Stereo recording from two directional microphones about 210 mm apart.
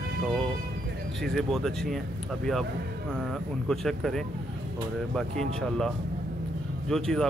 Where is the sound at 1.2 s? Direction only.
Centre (ahead or behind).